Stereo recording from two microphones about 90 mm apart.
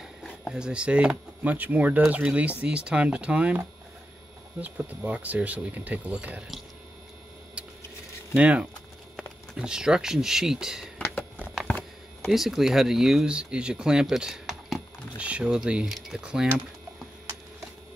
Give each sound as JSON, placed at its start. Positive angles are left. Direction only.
{"t": 0.2, "sound": "speech", "side_deg": -5}
{"t": 8.4, "sound": "speech", "side_deg": -15}
{"t": 11.6, "sound": "a sound", "side_deg": 15}
{"t": 12.3, "sound": "speech", "side_deg": -5}